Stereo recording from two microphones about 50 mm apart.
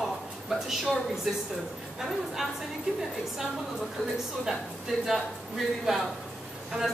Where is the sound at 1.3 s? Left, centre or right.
Centre.